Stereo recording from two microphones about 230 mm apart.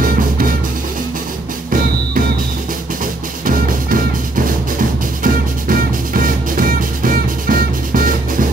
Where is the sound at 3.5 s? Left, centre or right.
Right.